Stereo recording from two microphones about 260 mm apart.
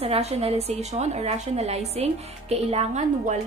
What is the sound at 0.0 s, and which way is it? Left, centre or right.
A woman's voice, right.